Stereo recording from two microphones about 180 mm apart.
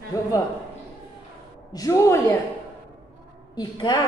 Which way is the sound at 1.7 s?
20° left (ahead or behind).